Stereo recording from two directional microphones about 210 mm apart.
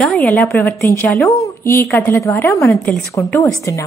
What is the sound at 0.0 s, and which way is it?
A woman's voice, 5° left (ahead or behind).